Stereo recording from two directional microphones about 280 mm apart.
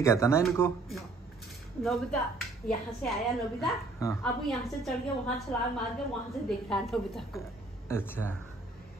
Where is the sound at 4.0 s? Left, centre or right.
Centre.